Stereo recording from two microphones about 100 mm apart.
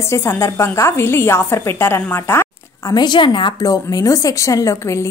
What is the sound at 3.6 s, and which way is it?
Speech, 40° left (ahead or behind).